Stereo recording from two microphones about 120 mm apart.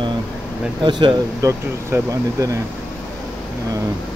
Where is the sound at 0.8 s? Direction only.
40° right (ahead or behind).